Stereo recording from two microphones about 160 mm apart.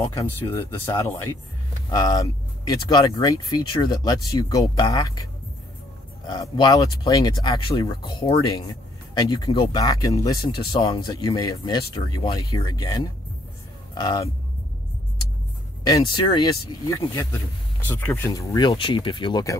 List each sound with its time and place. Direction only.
0.2 s speech: 15° left (ahead or behind)
6.2 s speech: 25° left (ahead or behind)
15.8 s speech: 25° left (ahead or behind)
17.8 s speech: 15° left (ahead or behind)